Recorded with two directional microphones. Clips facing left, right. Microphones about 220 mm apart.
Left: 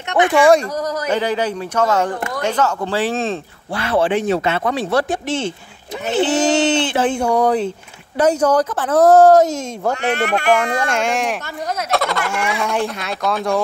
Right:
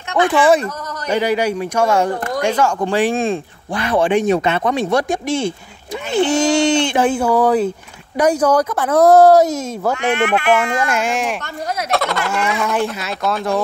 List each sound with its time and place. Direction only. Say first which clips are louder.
0.1 s speech: left 1 dB; 15° left (ahead or behind)
1.1 s speech: right 4 dB; 10° right (ahead or behind)
10.1 s speech: right 1 dB; 40° left (ahead or behind)
10.9 s speech: even; 5° right (ahead or behind)